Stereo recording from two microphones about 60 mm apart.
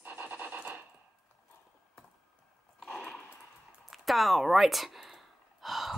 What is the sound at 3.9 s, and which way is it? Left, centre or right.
Gasp, centre.